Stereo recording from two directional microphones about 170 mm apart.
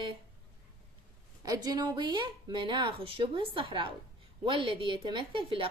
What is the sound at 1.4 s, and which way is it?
A woman's voice, 20° right (ahead or behind).